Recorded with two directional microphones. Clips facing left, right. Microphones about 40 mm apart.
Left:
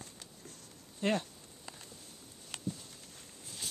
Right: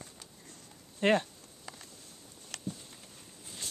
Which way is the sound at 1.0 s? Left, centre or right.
Right.